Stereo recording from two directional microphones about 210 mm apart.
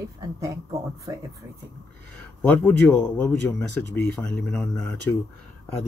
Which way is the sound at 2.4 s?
5° left (ahead or behind).